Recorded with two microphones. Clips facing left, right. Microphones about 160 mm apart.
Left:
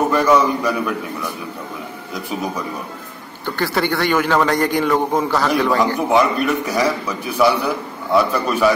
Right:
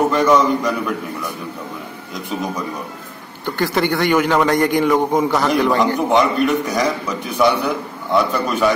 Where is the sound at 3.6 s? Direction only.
20° right (ahead or behind).